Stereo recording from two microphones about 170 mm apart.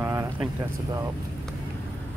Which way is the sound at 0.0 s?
15° right (ahead or behind).